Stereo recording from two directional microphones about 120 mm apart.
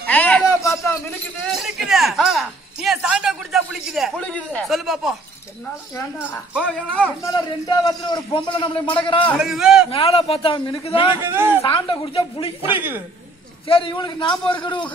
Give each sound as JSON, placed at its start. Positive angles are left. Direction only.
{"t": 0.0, "sound": "a sound", "side_deg": 15}
{"t": 1.5, "sound": "a sound", "side_deg": 0}
{"t": 4.2, "sound": "speech", "side_deg": 10}
{"t": 4.6, "sound": "a man's voice", "side_deg": 0}
{"t": 6.6, "sound": "speech", "side_deg": 10}
{"t": 7.2, "sound": "a man's voice", "side_deg": 30}
{"t": 9.4, "sound": "a man's voice", "side_deg": -5}
{"t": 9.8, "sound": "speech", "side_deg": 50}
{"t": 11.2, "sound": "a man's voice", "side_deg": -20}
{"t": 11.6, "sound": "speech", "side_deg": 40}
{"t": 12.7, "sound": "speech", "side_deg": -15}
{"t": 13.7, "sound": "a man's voice", "side_deg": 45}